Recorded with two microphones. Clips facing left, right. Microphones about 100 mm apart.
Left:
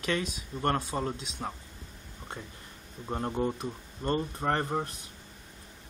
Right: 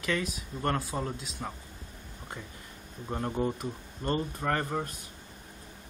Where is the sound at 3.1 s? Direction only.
15° left (ahead or behind).